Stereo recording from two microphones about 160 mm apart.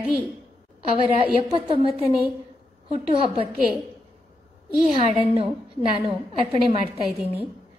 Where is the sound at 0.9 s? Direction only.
35° right (ahead or behind).